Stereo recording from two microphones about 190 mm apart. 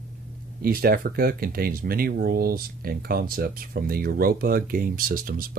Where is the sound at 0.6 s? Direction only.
50° right (ahead or behind).